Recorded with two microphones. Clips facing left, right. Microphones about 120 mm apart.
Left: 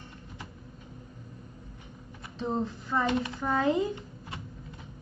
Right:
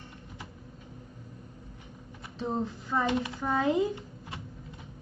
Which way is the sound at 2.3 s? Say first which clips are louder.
Left 1 dB; 5° right (ahead or behind).